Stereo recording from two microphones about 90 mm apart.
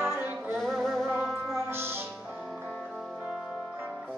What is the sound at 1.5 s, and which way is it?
Music, 25° right (ahead or behind).